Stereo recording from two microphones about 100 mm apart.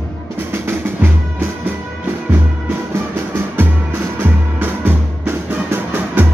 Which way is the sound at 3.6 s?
20° right (ahead or behind).